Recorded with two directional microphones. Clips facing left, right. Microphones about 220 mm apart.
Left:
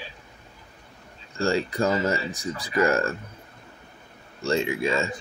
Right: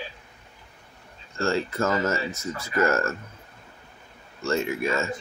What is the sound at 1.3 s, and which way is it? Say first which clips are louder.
Speech: left 1 dB; 15° left (ahead or behind).